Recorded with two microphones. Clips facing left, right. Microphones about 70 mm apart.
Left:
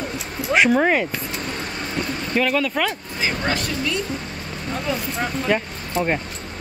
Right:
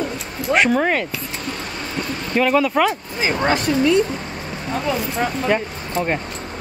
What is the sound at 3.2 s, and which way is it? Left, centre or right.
Speech, right.